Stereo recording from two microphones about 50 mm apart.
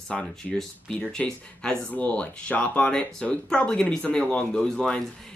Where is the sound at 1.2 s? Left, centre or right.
Left.